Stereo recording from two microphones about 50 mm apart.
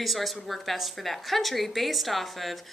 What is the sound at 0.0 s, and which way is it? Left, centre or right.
Speech, centre.